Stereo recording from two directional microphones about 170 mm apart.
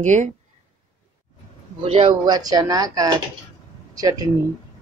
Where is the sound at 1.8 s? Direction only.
35° right (ahead or behind).